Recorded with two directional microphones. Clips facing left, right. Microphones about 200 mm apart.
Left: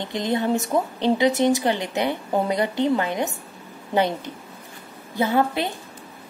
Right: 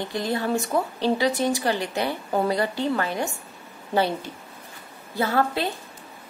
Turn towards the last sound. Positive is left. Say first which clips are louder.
# left 2 dB
turn(degrees=20)  # may be behind; listen again after turning